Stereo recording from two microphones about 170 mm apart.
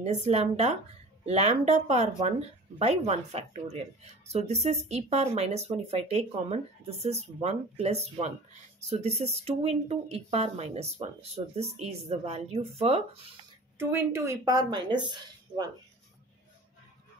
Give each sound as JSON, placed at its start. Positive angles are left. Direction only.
{"t": 0.0, "sound": "speech", "side_deg": -40}
{"t": 13.7, "sound": "speech", "side_deg": -15}